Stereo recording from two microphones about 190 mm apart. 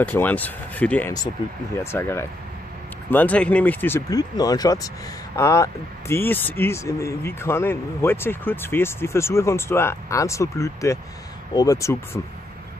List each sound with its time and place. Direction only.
0.0 s speech: 10° left (ahead or behind)